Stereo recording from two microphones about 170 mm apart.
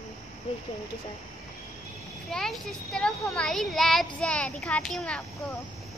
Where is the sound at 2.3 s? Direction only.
Centre (ahead or behind).